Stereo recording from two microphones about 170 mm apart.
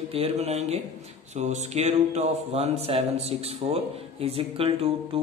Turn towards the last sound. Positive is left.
turn(degrees=-35)  # may be behind; listen again after turning